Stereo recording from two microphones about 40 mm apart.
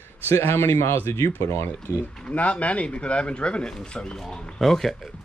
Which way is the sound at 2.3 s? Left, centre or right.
Left.